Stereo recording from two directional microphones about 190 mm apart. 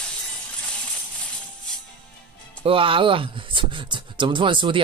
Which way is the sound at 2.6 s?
30° right (ahead or behind).